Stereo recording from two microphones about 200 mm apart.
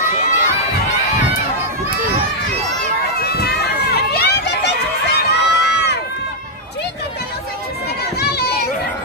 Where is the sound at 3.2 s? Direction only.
50° left (ahead or behind).